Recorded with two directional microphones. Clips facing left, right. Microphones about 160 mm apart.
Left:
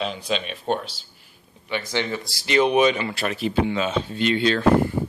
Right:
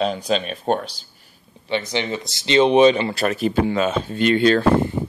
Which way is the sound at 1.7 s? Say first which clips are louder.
Right 3 dB; 20° right (ahead or behind).